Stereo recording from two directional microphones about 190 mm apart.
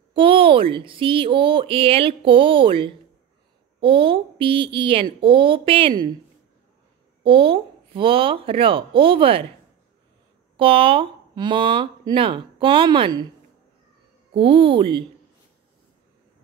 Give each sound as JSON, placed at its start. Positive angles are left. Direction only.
{"t": 0.1, "sound": "speech", "side_deg": -30}
{"t": 7.2, "sound": "speech", "side_deg": -25}
{"t": 10.6, "sound": "speech", "side_deg": -30}
{"t": 14.3, "sound": "speech", "side_deg": -25}